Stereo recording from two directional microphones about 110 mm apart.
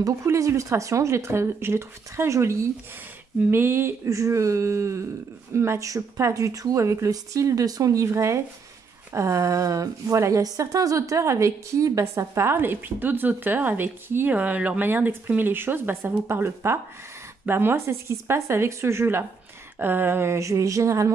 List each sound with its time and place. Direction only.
0.0 s a woman's voice: 30° right (ahead or behind)